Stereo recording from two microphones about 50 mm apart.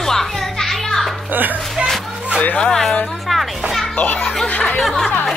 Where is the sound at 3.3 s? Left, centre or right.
Centre.